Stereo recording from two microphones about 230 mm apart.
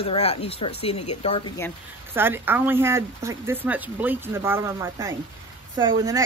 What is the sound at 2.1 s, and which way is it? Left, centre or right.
Speech, centre.